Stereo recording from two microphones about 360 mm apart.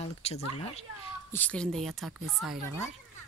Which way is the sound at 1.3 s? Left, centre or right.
Centre.